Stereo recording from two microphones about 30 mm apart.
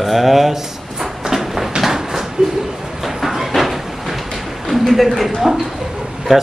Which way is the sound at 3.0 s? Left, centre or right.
Centre.